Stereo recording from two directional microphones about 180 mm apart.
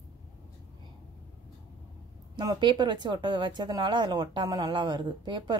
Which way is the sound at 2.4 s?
25° right (ahead or behind).